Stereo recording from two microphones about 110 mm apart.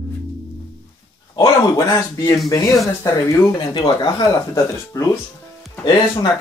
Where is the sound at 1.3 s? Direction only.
30° left (ahead or behind).